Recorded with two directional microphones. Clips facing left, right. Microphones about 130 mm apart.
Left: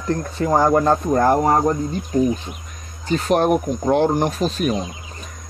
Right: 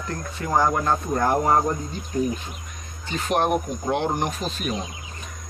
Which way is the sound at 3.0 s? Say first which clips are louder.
Left 6 dB; 40° left (ahead or behind).